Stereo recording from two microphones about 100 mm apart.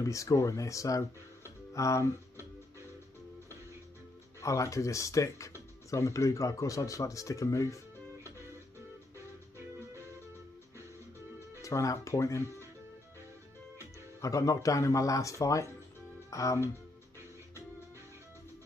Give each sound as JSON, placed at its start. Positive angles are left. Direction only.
{"t": 0.0, "sound": "speech", "side_deg": 35}
{"t": 4.4, "sound": "speech", "side_deg": 30}
{"t": 11.6, "sound": "speech", "side_deg": 35}
{"t": 14.2, "sound": "speech", "side_deg": 35}